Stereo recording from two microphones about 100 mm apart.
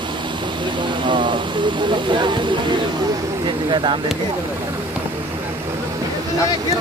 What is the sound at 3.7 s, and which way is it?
Speech, 55° right (ahead or behind).